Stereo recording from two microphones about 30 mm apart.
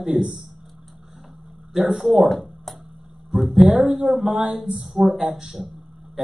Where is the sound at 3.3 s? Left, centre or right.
Right.